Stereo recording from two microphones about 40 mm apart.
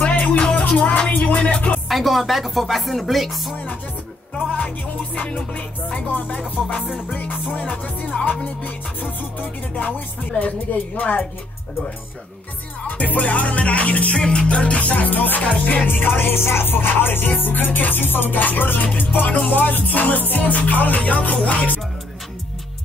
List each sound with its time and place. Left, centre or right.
0.5 s music: left
1.9 s music: centre
4.6 s music: left
5.9 s music: left
12.8 s music: left
16.7 s music: left
17.3 s music: left